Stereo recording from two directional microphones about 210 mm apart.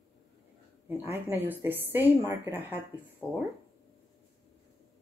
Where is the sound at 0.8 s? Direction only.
10° right (ahead or behind).